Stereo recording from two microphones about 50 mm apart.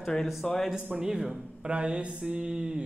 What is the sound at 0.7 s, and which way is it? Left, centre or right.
Speech, centre.